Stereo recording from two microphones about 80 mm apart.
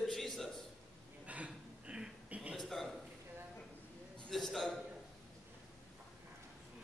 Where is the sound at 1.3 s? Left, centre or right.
Centre.